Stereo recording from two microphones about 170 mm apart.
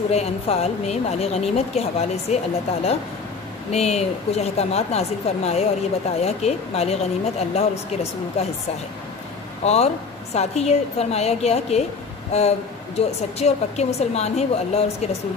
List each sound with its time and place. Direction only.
0.1 s speech: 40° left (ahead or behind)
9.6 s speech: 40° left (ahead or behind)